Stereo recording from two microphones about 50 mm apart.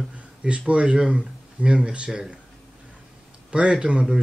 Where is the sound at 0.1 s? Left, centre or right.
Right.